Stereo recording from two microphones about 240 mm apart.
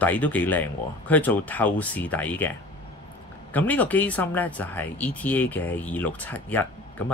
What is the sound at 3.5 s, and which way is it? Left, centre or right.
Speech, centre.